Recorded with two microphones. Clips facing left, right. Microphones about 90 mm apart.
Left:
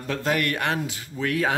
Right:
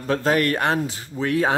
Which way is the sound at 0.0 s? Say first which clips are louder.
Right 5 dB; 35° right (ahead or behind).